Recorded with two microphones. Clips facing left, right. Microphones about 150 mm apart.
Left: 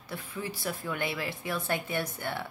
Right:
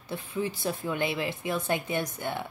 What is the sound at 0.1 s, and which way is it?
A woman's voice, 20° right (ahead or behind).